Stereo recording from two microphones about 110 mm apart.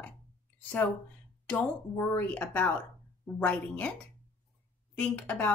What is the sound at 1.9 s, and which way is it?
A woman's voice, 20° left (ahead or behind).